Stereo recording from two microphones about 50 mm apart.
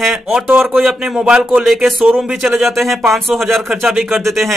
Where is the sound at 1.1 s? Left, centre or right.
Centre.